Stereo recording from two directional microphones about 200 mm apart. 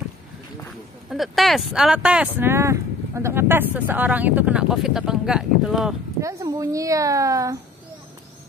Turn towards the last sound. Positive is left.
turn(degrees=-15)  # may be behind; listen again after turning